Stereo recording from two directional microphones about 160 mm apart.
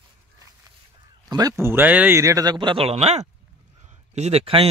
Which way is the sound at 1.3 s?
20° right (ahead or behind).